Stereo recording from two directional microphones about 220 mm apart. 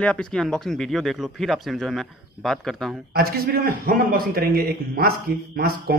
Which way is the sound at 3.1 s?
45° right (ahead or behind).